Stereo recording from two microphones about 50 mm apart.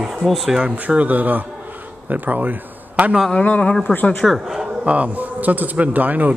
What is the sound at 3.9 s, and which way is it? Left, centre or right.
Speech, left.